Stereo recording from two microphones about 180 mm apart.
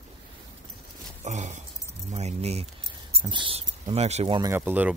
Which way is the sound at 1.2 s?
40° right (ahead or behind).